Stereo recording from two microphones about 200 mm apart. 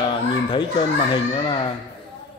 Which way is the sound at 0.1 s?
25° left (ahead or behind).